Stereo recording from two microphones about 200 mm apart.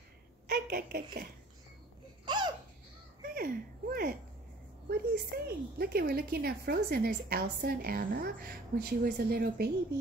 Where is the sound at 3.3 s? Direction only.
45° right (ahead or behind).